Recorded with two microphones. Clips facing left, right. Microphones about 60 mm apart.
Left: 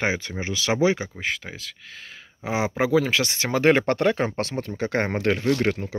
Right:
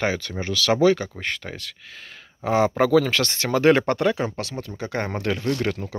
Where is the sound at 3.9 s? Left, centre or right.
Left.